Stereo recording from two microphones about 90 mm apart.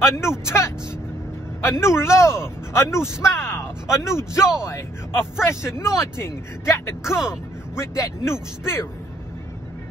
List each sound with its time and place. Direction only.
0.0 s a man's voice: 30° left (ahead or behind)